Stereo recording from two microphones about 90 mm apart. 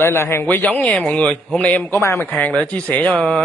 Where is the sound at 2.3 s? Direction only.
20° left (ahead or behind).